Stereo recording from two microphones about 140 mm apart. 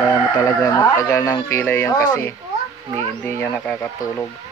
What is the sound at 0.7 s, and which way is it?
Speech, 25° left (ahead or behind).